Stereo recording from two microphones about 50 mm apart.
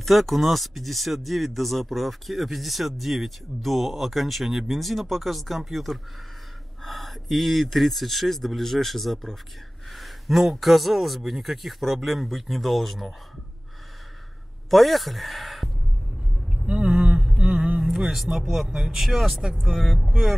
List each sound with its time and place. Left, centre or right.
0.0 s speech: centre
14.7 s speech: centre
16.6 s a sound: right
17.4 s mantra: right
17.8 s speech: centre